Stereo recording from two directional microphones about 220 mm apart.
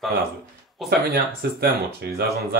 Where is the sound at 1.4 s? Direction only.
45° right (ahead or behind).